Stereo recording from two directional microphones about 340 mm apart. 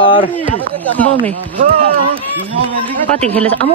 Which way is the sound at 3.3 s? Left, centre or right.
Centre.